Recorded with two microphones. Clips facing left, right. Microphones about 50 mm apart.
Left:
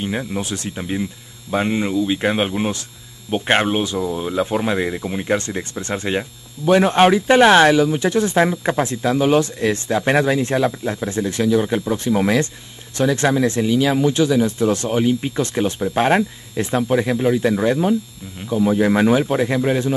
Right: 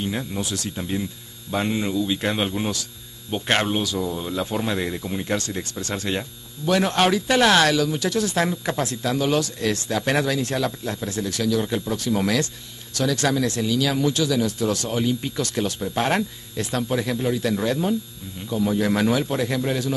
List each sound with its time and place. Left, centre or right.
0.0 s speech: left